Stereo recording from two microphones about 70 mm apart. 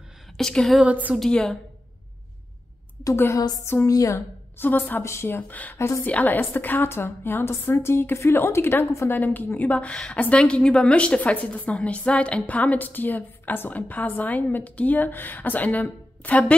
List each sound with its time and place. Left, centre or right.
0.4 s a sound: centre
0.8 s a woman's voice: right
1.2 s a sound: centre
3.3 s a woman's voice: left
4.6 s a woman's voice: left
5.0 s a woman's voice: left
5.5 s a woman's voice: left
5.8 s a woman's voice: left
6.0 s a woman's voice: left
9.1 s a woman's voice: left